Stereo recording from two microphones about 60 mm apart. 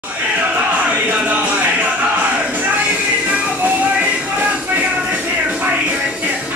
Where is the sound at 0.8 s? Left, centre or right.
Right.